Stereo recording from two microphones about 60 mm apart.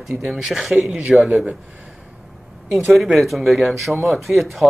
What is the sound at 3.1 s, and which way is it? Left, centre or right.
Speech, centre.